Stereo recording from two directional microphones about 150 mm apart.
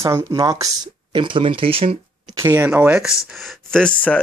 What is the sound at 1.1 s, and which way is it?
Speech, 35° right (ahead or behind).